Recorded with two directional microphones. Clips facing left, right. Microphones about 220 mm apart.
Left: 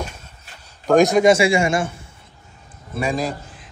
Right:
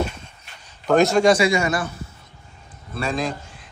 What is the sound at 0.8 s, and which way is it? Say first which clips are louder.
A man's voice: left 2 dB; 15° left (ahead or behind).